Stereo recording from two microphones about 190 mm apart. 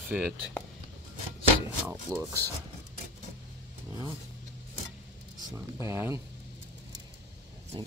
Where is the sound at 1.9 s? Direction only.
15° right (ahead or behind).